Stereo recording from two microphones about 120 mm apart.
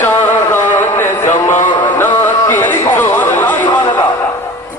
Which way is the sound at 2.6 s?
15° left (ahead or behind).